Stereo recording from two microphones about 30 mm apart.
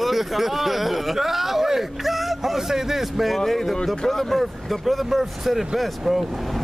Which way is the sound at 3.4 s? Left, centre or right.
Centre.